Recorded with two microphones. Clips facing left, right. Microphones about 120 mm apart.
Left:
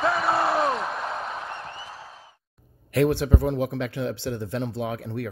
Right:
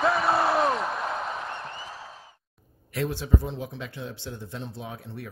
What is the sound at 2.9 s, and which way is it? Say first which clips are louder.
Speech: left 6 dB; 65° left (ahead or behind).